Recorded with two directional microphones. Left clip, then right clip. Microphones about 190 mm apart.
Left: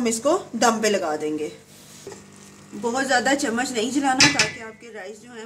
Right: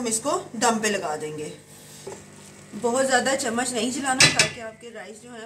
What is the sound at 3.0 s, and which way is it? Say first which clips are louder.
A woman's voice: left 5 dB; 45° left (ahead or behind).